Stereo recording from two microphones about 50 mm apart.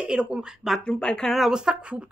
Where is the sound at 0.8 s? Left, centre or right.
Centre.